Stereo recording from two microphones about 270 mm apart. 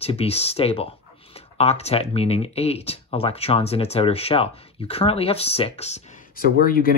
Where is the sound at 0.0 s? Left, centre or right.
Left.